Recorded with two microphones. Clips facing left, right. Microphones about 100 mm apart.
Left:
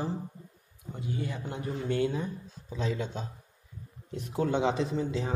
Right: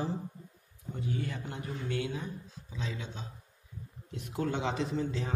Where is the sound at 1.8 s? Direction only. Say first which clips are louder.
Left 6 dB; 35° left (ahead or behind).